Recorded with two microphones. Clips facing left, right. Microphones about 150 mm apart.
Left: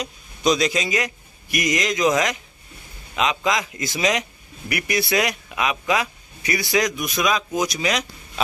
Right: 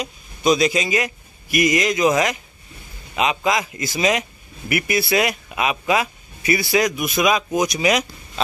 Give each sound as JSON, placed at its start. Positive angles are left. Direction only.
{"t": 0.0, "sound": "a man's voice", "side_deg": -5}